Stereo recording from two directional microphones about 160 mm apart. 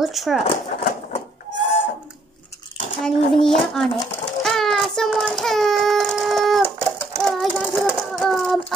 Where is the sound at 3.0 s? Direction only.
5° left (ahead or behind).